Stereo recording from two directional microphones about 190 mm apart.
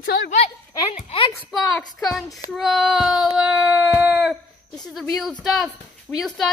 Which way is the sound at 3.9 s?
10° right (ahead or behind).